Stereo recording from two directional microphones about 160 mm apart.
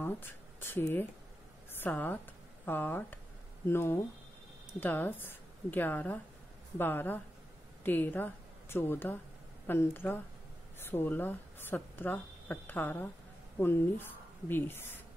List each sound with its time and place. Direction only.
0.0 s a woman's voice: 15° left (ahead or behind)